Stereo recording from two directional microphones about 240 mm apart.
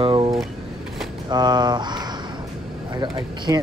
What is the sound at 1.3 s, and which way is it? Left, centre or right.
Speech, centre.